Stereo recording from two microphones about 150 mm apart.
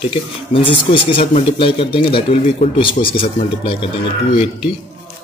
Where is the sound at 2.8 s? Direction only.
35° left (ahead or behind).